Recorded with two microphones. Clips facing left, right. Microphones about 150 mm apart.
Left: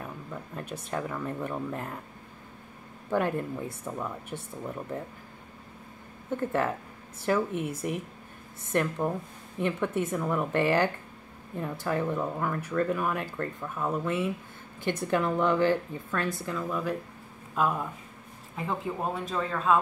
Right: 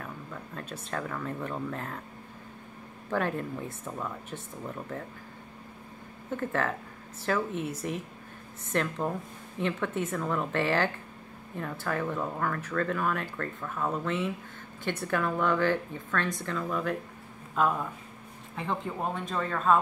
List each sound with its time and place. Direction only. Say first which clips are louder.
0.0 s speech: left 2 dB; 15° left (ahead or behind)
3.1 s speech: left 2 dB; 15° left (ahead or behind)
6.3 s speech: left 2 dB; 15° left (ahead or behind)